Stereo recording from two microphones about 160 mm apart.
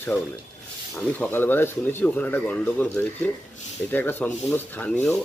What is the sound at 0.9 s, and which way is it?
Speech, 10° left (ahead or behind).